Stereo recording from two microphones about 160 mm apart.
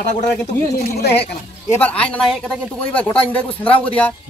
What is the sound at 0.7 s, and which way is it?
Speech, 75° left (ahead or behind).